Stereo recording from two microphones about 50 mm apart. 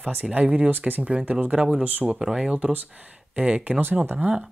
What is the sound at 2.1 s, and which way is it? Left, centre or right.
Speech, centre.